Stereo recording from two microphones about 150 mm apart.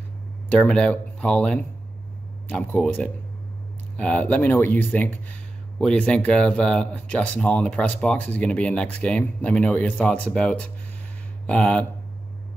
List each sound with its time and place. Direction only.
0.6 s speech: 5° left (ahead or behind)